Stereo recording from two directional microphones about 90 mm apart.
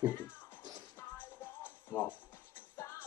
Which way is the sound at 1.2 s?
20° left (ahead or behind).